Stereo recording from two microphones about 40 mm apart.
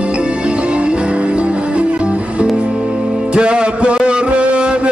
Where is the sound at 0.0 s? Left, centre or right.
Right.